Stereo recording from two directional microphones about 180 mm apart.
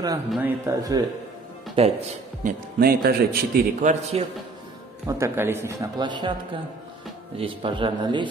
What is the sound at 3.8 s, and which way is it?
Speech, 45° right (ahead or behind).